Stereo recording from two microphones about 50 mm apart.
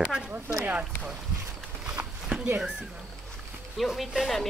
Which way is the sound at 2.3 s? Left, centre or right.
Right.